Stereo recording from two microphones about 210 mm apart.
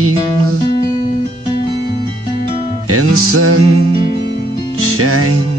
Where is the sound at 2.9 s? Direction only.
90° right.